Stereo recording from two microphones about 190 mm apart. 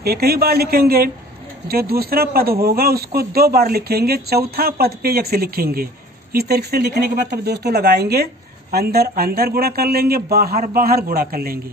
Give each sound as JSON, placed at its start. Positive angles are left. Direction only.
{"t": 0.0, "sound": "a man's voice", "side_deg": -55}